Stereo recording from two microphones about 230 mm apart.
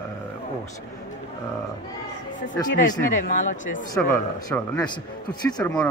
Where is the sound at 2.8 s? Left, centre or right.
Left.